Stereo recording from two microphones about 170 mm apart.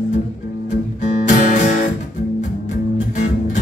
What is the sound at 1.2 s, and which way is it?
Music, 45° left (ahead or behind).